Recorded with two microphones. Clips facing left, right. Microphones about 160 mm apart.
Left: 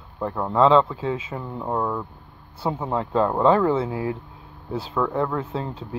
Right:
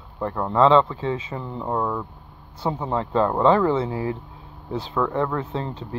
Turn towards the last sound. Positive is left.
turn(degrees=5)  # may be behind; listen again after turning